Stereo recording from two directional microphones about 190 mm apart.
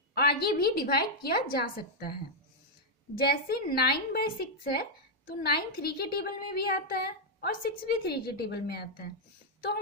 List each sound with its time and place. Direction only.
0.1 s a woman's voice: 55° left (ahead or behind)
3.2 s a woman's voice: 55° left (ahead or behind)